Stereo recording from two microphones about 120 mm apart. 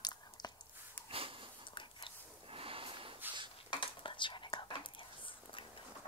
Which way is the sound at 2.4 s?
50° right (ahead or behind).